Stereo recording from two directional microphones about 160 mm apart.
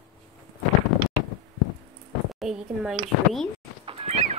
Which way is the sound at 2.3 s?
5° right (ahead or behind).